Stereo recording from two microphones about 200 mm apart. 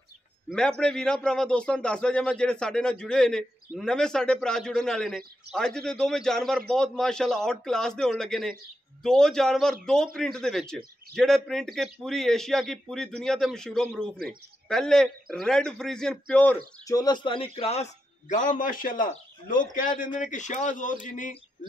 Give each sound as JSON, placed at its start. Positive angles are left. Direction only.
{"t": 0.5, "sound": "a man's voice", "side_deg": 5}
{"t": 16.8, "sound": "a man's voice", "side_deg": 20}